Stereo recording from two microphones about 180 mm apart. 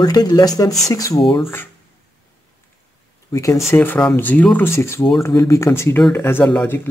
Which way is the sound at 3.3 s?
15° left (ahead or behind).